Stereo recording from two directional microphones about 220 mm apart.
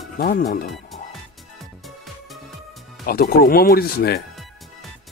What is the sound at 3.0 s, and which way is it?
Speech, 40° left (ahead or behind).